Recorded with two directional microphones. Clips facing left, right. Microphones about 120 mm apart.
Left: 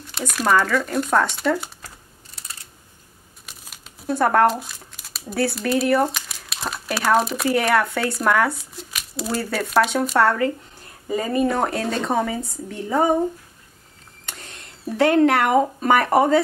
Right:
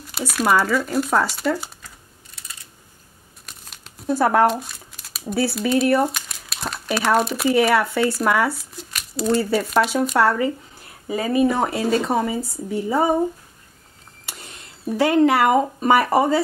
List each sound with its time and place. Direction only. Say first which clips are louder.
0.0 s speech: right 2 dB; 5° right (ahead or behind)
3.4 s speech: even; centre (ahead or behind)
14.2 s speech: even; 5° right (ahead or behind)